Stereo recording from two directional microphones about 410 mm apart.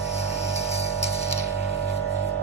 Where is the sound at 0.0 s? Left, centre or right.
Centre.